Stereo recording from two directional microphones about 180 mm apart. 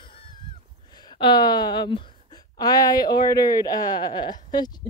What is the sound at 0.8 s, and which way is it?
Speech, 25° left (ahead or behind).